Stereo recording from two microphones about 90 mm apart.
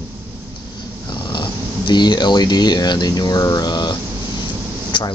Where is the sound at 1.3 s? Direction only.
55° left (ahead or behind).